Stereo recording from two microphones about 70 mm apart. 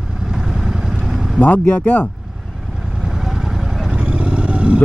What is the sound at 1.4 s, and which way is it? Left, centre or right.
Speech, left.